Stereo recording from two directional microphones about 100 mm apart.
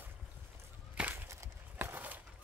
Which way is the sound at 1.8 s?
15° right (ahead or behind).